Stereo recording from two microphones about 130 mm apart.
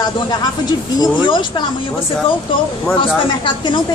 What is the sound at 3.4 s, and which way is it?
Speech, 40° left (ahead or behind).